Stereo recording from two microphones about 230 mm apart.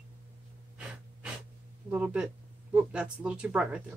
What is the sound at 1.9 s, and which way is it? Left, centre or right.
Speech, centre.